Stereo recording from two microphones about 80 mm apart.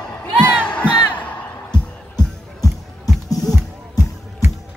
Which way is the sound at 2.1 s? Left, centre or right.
Left.